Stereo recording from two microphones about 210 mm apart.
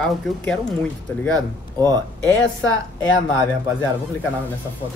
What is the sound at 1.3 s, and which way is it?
Speech, 20° right (ahead or behind).